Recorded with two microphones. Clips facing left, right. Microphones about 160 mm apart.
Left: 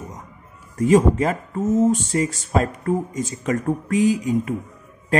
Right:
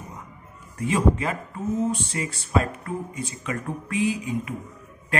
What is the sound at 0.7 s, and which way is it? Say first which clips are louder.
Speech: left 7 dB; 40° left (ahead or behind).